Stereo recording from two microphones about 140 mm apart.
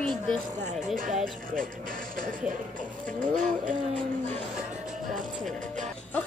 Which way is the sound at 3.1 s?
65° right (ahead or behind).